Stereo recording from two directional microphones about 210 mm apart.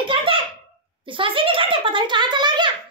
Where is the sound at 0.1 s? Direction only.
25° right (ahead or behind).